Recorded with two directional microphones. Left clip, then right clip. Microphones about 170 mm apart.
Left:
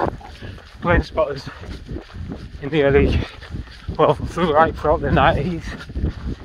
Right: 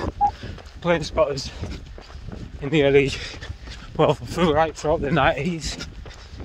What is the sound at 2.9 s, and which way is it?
Speech, 25° right (ahead or behind).